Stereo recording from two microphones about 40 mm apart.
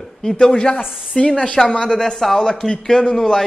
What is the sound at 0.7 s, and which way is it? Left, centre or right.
Speech, centre.